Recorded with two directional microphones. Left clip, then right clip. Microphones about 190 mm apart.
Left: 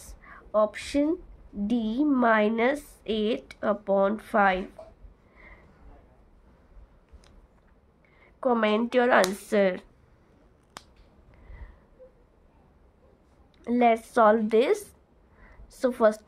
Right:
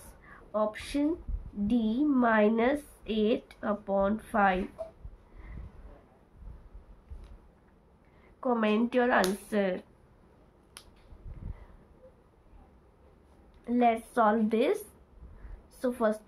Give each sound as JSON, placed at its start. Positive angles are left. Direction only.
{"t": 0.2, "sound": "a sound", "side_deg": 60}
{"t": 1.7, "sound": "a woman's voice", "side_deg": 60}
{"t": 8.4, "sound": "a woman's voice", "side_deg": 60}
{"t": 13.7, "sound": "a woman's voice", "side_deg": 60}